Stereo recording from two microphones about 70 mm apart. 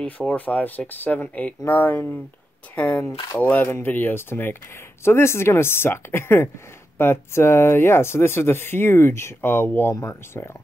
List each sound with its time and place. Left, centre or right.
0.5 s speech: left
3.6 s speech: left